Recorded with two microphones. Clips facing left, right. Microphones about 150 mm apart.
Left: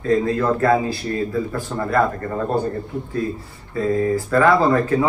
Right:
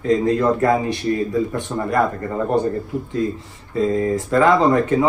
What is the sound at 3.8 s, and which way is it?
Speech, 20° right (ahead or behind).